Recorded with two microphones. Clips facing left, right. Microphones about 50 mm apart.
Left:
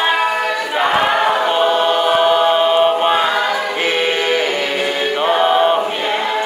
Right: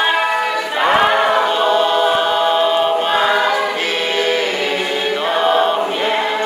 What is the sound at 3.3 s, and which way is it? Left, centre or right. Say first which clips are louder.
Choir: right 2 dB; centre.